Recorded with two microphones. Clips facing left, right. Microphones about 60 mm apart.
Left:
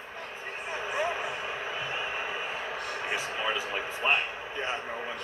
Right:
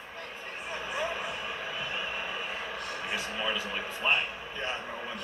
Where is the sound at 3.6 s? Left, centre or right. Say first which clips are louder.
Left 2 dB; centre.